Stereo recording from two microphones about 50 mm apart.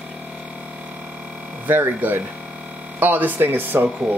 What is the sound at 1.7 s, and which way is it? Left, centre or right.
Speech, right.